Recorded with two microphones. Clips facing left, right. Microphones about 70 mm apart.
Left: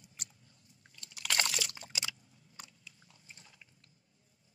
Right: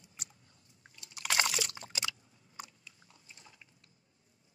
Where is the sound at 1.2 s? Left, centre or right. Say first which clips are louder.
Right 2 dB; centre.